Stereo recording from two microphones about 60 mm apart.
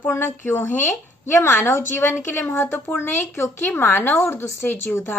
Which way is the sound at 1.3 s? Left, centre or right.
Left.